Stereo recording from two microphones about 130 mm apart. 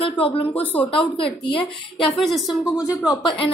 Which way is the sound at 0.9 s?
45° left (ahead or behind).